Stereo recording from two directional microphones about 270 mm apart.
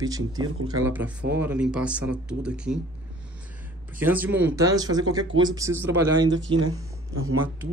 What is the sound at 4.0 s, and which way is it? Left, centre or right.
A man's voice, centre.